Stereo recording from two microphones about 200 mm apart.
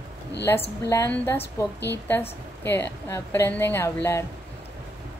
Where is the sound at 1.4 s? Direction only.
60° left (ahead or behind).